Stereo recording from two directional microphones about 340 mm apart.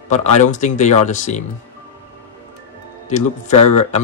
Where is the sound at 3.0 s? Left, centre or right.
Left.